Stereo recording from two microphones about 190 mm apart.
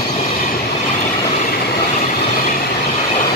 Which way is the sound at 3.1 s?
30° left (ahead or behind).